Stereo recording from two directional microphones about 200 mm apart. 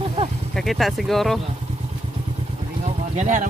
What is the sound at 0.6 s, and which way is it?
Speech, centre (ahead or behind).